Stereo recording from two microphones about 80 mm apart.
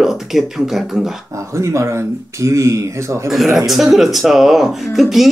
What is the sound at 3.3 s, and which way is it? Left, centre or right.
Speech, centre.